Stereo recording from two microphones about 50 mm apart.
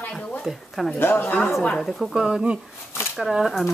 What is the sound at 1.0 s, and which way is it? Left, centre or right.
Speech, left.